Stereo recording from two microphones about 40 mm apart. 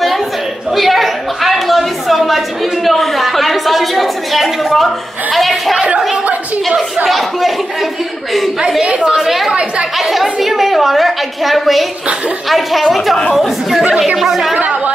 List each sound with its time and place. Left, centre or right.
0.7 s a sound: centre
5.3 s a woman's voice: centre
7.1 s a woman's voice: centre
8.8 s a woman's voice: right
9.2 s a woman's voice: centre
9.5 s a woman's voice: right
9.9 s a woman's voice: centre
13.8 s a woman's voice: centre
14.1 s a woman's voice: centre